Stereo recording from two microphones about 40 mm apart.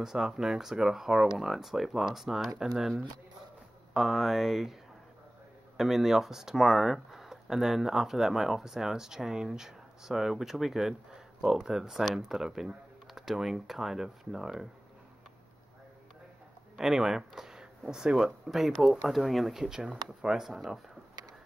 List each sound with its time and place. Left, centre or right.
0.0 s speech: centre
3.9 s speech: centre
5.8 s speech: centre
16.7 s speech: centre
18.5 s speech: centre